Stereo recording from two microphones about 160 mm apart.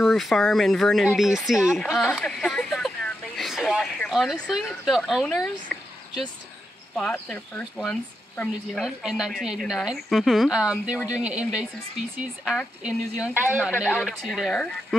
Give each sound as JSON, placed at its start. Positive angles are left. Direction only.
{"t": 0.0, "sound": "speech", "side_deg": 0}